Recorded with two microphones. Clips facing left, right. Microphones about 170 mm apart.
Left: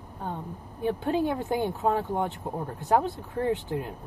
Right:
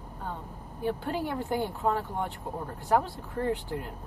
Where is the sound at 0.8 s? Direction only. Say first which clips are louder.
Left 5 dB; 20° left (ahead or behind).